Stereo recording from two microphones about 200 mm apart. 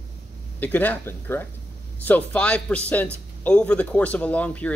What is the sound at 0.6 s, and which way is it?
A man's voice, 10° left (ahead or behind).